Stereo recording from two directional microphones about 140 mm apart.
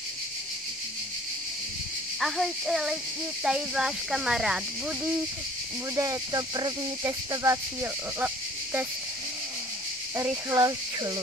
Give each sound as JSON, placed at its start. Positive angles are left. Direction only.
{"t": 2.1, "sound": "speech", "side_deg": 0}
{"t": 5.9, "sound": "speech", "side_deg": -25}
{"t": 10.1, "sound": "speech", "side_deg": -25}